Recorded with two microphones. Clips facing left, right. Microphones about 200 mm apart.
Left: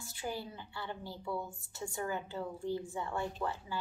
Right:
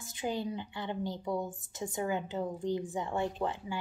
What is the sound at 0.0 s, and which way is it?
A woman's voice, 20° right (ahead or behind).